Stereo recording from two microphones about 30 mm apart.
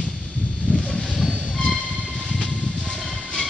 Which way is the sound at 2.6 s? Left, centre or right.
Left.